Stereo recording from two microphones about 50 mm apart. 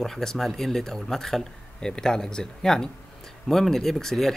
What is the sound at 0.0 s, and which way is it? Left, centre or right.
Speech, centre.